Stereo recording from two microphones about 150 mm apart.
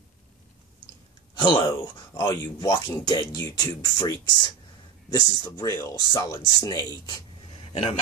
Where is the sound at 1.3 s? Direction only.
30° left (ahead or behind).